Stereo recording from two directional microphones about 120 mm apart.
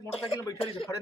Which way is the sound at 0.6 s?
50° left (ahead or behind).